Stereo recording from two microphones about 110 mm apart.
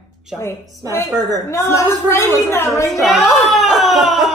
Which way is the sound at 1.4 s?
25° left (ahead or behind).